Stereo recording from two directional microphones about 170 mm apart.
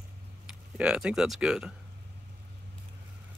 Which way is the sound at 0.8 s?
5° right (ahead or behind).